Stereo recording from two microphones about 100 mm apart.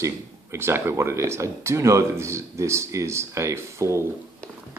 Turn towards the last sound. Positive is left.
turn(degrees=-30)  # may be behind; listen again after turning